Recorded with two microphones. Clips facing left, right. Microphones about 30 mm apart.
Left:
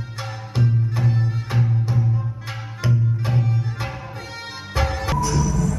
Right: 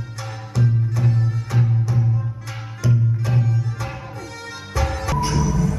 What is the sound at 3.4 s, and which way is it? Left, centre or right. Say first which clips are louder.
Music: even; left.